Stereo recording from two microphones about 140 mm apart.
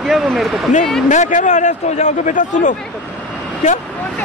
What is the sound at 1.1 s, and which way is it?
A man's voice, 60° left (ahead or behind).